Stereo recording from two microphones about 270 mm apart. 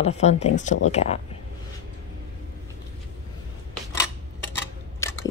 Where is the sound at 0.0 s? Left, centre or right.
Left.